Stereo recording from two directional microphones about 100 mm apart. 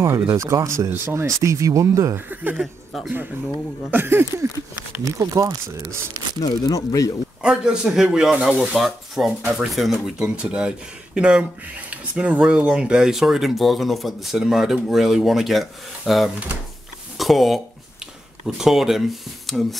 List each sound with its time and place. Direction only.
0.0 s speech: 30° right (ahead or behind)
2.1 s speech: 20° right (ahead or behind)
2.6 s speech: centre (ahead or behind)
3.9 s speech: 20° right (ahead or behind)
6.4 s speech: 40° left (ahead or behind)
7.4 s speech: 5° right (ahead or behind)
18.6 s speech: 5° right (ahead or behind)